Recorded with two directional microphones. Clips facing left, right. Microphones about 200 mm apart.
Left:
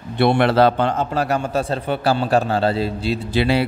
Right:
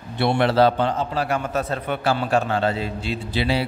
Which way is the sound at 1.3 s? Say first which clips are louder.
Left 3 dB; 30° left (ahead or behind).